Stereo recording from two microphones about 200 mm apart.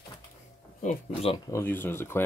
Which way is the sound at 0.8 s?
35° left (ahead or behind).